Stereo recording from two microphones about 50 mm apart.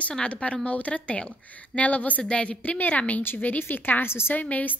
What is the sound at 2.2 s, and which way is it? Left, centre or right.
Speech, centre.